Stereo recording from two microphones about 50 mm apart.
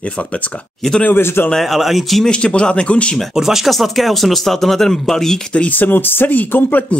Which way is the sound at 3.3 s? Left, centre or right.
Centre.